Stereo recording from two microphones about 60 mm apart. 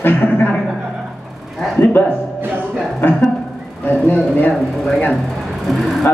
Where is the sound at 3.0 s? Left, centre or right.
Left.